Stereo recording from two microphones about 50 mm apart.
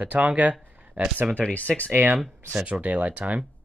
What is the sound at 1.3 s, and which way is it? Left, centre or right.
Speech, left.